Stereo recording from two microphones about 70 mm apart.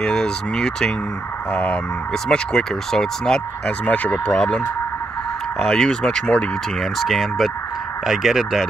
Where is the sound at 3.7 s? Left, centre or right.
Left.